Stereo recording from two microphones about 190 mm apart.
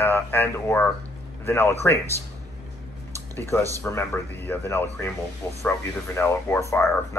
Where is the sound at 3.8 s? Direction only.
10° left (ahead or behind).